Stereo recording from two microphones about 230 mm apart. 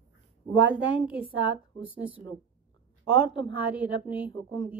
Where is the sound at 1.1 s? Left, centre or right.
Left.